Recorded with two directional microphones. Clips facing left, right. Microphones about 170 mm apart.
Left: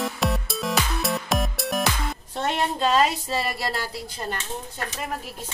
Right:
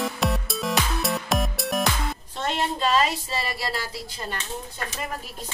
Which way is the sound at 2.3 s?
55° left (ahead or behind).